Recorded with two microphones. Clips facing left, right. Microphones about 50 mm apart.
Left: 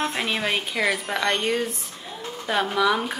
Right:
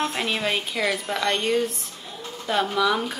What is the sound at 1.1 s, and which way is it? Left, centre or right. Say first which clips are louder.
A woman's voice: even; centre.